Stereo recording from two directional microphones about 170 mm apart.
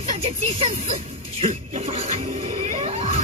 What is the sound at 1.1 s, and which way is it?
Music, 40° right (ahead or behind).